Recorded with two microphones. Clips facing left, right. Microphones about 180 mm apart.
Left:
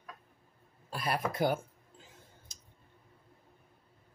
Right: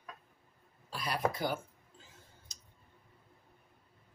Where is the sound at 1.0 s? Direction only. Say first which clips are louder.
Left 2 dB; 55° left (ahead or behind).